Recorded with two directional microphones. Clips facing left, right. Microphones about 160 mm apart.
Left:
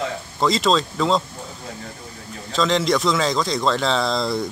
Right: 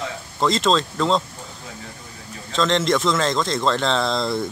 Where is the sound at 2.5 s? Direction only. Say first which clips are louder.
Even; centre (ahead or behind).